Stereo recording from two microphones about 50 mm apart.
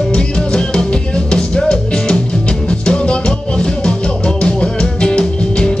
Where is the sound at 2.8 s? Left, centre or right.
Centre.